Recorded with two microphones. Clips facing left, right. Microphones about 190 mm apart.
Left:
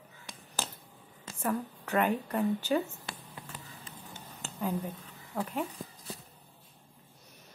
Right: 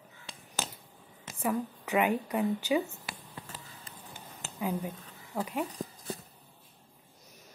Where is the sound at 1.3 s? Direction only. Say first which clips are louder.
Right 1 dB; 10° right (ahead or behind).